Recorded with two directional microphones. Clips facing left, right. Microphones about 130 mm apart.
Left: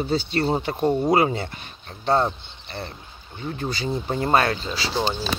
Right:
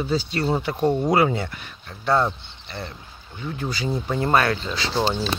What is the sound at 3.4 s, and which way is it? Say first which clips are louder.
Speech: even; 40° left (ahead or behind).